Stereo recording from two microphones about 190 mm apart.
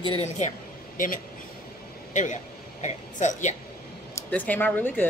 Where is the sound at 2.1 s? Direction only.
40° left (ahead or behind).